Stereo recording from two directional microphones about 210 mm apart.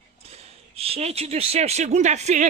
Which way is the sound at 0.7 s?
30° right (ahead or behind).